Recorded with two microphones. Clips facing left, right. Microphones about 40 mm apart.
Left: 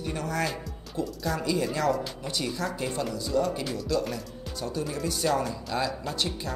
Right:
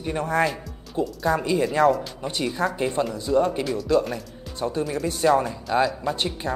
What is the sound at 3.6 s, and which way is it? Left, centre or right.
Speech, centre.